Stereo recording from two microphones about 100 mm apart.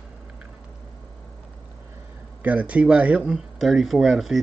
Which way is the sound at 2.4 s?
15° right (ahead or behind).